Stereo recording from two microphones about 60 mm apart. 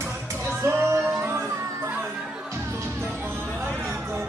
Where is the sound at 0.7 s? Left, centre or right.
Right.